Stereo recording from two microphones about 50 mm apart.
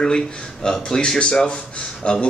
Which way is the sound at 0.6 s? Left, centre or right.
Centre.